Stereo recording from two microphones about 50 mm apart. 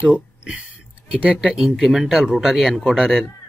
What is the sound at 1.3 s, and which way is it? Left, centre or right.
Speech, centre.